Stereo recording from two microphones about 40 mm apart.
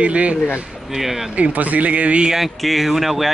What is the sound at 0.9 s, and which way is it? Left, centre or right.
Speech, centre.